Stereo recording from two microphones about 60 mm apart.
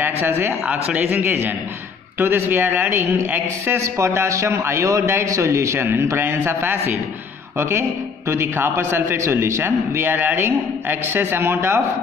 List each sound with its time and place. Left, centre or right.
0.0 s a man's voice: right
3.7 s a man's voice: right
9.2 s a man's voice: right
9.6 s a man's voice: right